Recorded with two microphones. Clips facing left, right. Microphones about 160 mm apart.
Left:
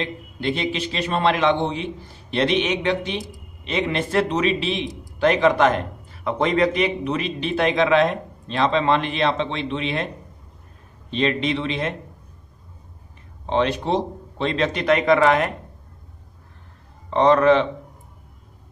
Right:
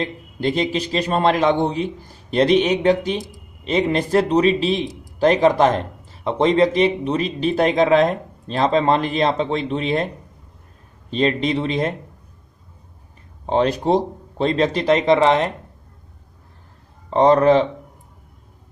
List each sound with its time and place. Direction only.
0.0 s speech: 40° right (ahead or behind)
11.1 s speech: 40° right (ahead or behind)
13.5 s speech: 40° right (ahead or behind)
17.1 s speech: 35° right (ahead or behind)